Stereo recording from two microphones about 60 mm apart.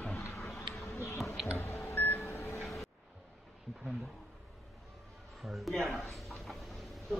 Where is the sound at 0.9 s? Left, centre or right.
Left.